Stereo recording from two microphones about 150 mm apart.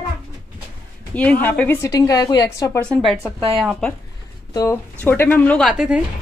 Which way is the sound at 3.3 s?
35° right (ahead or behind).